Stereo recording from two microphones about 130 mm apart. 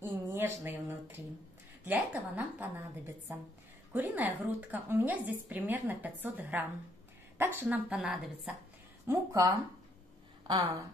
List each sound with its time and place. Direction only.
0.0 s a woman's voice: 15° right (ahead or behind)
3.9 s a woman's voice: 15° right (ahead or behind)
7.9 s a woman's voice: 5° right (ahead or behind)
9.0 s speech: 25° right (ahead or behind)